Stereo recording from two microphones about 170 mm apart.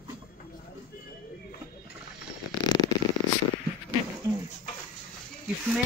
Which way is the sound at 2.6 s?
25° left (ahead or behind).